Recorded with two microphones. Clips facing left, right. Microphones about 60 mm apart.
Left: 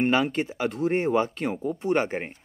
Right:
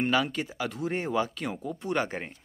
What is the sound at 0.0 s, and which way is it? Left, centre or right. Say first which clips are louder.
Speech: left 4 dB; left.